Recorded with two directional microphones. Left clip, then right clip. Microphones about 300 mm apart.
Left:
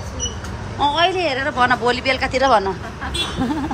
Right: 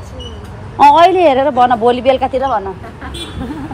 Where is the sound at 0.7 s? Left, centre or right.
Centre.